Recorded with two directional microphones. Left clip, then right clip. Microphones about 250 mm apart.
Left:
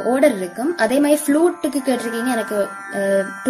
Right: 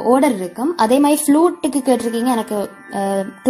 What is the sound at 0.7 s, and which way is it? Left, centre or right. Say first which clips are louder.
A woman's voice: right 2 dB; centre.